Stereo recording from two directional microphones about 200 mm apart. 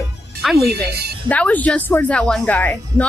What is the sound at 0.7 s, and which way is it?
Speech, 55° right (ahead or behind).